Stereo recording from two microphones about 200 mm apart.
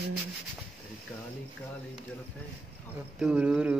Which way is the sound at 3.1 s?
5° right (ahead or behind).